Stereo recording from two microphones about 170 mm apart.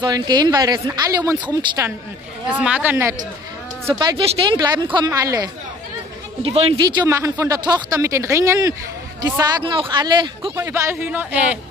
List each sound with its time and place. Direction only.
0.0 s speech: 25° right (ahead or behind)
2.6 s speech: 10° right (ahead or behind)
4.3 s speech: 25° right (ahead or behind)
6.4 s speech: 35° right (ahead or behind)
6.8 s speech: 25° right (ahead or behind)
10.6 s speech: 15° right (ahead or behind)